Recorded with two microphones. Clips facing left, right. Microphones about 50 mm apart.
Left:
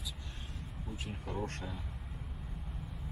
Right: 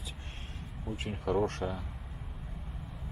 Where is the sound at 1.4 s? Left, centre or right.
Right.